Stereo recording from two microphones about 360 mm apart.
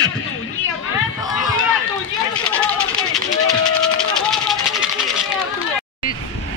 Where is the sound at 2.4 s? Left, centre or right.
Centre.